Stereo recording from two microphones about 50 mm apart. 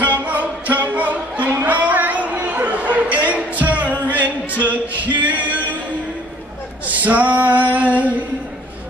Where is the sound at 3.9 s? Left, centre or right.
Left.